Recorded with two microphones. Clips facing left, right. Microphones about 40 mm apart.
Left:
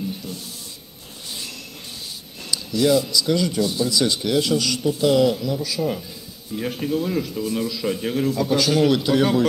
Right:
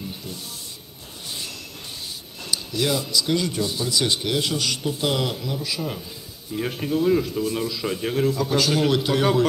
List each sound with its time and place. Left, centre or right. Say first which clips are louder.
2.5 s a sound: left 5 dB; right
3.1 s speech: left 2 dB; right
5.4 s a man's voice: left 4 dB; centre